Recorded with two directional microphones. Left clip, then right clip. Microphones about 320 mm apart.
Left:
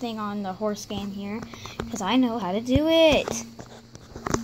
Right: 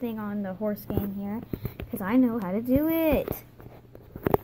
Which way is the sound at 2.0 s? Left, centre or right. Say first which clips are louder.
Left 2 dB; centre.